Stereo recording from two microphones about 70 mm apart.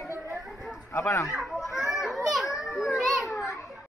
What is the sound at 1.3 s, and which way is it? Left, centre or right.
Children playing, centre.